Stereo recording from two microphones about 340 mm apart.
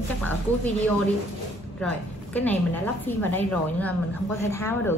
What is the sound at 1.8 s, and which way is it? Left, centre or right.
A woman's voice, centre.